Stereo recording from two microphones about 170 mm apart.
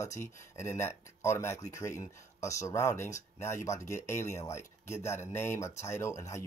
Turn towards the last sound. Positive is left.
turn(degrees=15)  # may be behind; listen again after turning